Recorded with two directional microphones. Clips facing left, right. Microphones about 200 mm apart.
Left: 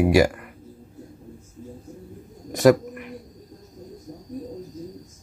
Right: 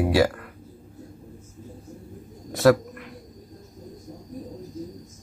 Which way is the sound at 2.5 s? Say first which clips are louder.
Left 2 dB; 15° left (ahead or behind).